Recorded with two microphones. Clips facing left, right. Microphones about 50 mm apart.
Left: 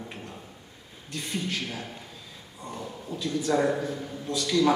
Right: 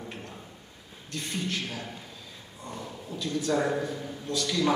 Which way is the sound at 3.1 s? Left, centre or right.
Centre.